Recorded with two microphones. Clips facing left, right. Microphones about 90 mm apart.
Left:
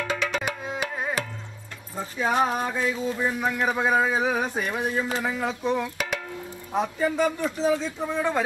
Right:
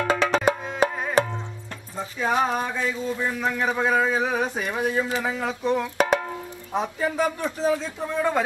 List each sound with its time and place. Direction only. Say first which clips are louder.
0.0 s music: right 6 dB; 35° right (ahead or behind)
0.8 s tabla: right 11 dB; 40° right (ahead or behind)
2.1 s speech: even; 5° left (ahead or behind)
5.9 s music: right 9 dB; 35° right (ahead or behind)
6.7 s speech: left 1 dB; centre (ahead or behind)